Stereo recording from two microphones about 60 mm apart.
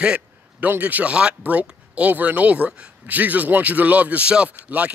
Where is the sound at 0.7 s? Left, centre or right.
Right.